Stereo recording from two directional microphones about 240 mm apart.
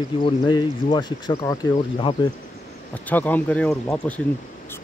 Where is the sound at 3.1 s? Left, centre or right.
Centre.